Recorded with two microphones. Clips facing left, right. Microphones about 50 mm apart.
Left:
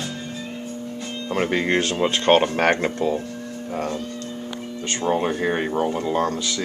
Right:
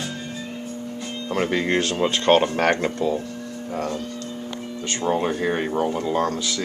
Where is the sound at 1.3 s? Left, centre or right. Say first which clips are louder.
Left 1 dB; centre.